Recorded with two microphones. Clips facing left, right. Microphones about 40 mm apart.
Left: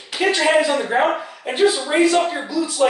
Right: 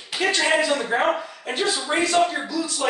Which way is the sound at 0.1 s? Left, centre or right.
Centre.